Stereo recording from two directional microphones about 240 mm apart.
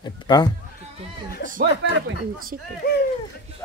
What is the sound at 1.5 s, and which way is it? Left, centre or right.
Speech, right.